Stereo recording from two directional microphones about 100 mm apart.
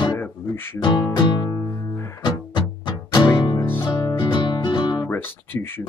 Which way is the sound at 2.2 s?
50° left (ahead or behind).